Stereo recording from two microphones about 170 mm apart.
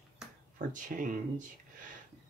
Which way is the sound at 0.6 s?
50° right (ahead or behind).